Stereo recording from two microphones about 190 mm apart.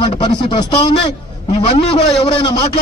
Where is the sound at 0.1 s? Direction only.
25° left (ahead or behind).